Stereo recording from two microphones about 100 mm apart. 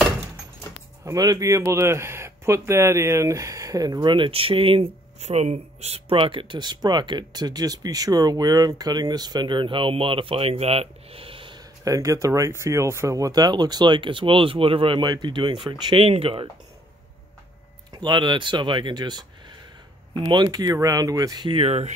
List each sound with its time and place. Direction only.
1.0 s speech: 40° right (ahead or behind); by 11.6 s 60° right (ahead or behind)
11.8 s speech: 35° right (ahead or behind); by 15.7 s 55° right (ahead or behind)
16.0 s speech: 70° right (ahead or behind)
17.9 s speech: 45° right (ahead or behind)
21.5 s speech: 70° right (ahead or behind)